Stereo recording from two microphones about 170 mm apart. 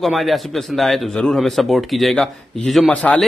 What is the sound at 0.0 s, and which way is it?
A man's voice, centre (ahead or behind).